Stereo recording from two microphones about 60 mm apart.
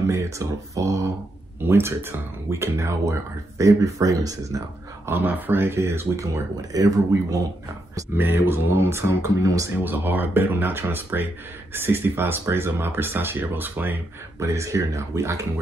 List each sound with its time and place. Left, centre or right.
0.0 s speech: right
1.6 s speech: right
2.5 s speech: right
5.0 s speech: right
8.2 s speech: right
9.2 s speech: right
9.8 s speech: right
14.4 s speech: right